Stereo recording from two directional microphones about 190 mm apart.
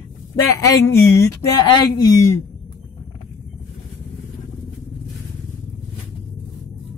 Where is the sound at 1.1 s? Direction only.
15° left (ahead or behind).